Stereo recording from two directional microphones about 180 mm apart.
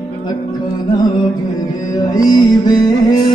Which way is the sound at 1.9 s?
20° left (ahead or behind).